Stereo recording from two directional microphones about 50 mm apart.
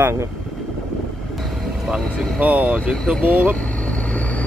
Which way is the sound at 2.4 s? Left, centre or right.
Right.